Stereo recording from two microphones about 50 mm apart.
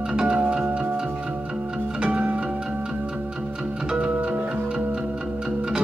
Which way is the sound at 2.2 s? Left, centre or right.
Right.